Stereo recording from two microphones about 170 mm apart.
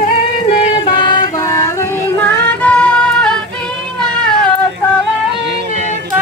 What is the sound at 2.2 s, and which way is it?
Music, 10° left (ahead or behind).